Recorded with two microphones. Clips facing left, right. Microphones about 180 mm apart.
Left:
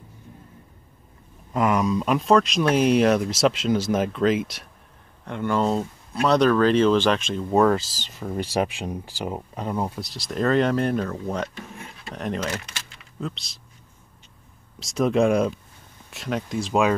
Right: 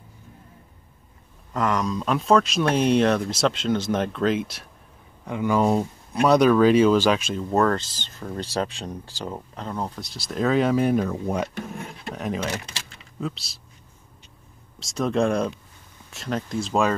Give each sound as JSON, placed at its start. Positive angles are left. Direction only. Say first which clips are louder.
{"t": 1.5, "sound": "speech", "louder": "left 2 dB", "side_deg": 15}
{"t": 1.8, "sound": "speech", "louder": "left 3 dB", "side_deg": 5}
{"t": 14.8, "sound": "speech", "louder": "left 3 dB", "side_deg": 0}